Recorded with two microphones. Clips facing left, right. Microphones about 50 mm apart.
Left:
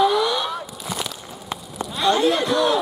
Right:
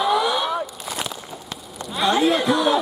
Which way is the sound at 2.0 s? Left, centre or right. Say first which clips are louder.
Even; centre.